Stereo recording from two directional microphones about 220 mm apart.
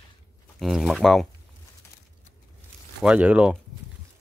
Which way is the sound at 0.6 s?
Centre (ahead or behind).